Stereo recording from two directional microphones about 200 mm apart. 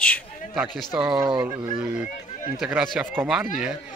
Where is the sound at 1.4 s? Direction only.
5° right (ahead or behind).